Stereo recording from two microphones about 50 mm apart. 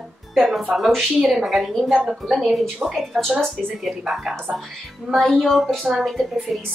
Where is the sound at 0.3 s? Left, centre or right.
Centre.